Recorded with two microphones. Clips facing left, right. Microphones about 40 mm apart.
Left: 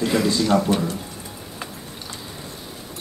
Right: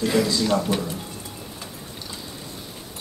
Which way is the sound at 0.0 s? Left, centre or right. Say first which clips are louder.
Left 1 dB; centre.